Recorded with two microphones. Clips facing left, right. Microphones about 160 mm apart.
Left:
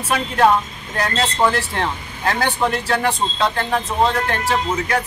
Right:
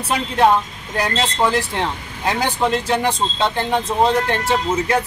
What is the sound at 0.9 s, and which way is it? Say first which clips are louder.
Speech: even; 15° right (ahead or behind).